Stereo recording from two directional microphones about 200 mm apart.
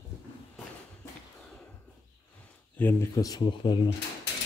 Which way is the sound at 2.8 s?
10° left (ahead or behind).